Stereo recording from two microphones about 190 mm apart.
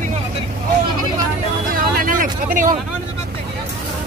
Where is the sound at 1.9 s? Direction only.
45° right (ahead or behind).